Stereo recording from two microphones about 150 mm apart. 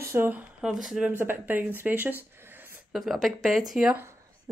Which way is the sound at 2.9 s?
Centre (ahead or behind).